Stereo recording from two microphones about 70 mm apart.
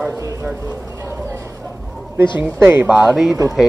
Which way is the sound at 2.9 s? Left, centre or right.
Right.